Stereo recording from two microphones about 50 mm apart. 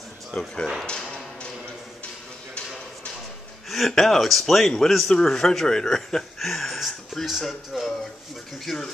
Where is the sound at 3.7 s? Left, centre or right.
Centre.